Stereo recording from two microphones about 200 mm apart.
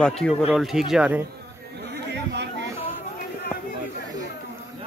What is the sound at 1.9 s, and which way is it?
Chatter, 60° right (ahead or behind).